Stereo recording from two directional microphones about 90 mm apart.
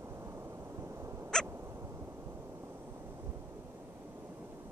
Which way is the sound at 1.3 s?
5° left (ahead or behind).